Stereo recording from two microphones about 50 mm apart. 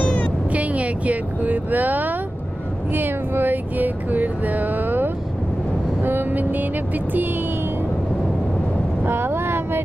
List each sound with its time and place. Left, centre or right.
0.0 s music: left
0.5 s speech: right
2.9 s music: right
6.0 s vehicle: right
9.0 s vehicle: right